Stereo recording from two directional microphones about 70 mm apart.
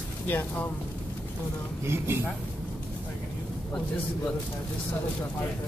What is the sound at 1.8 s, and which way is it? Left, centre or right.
Speech, right.